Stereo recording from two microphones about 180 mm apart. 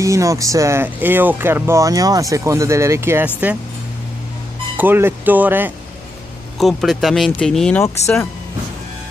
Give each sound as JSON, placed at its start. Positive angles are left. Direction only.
{"t": 0.0, "sound": "speech", "side_deg": -15}
{"t": 4.7, "sound": "speech", "side_deg": -10}
{"t": 6.6, "sound": "speech", "side_deg": 0}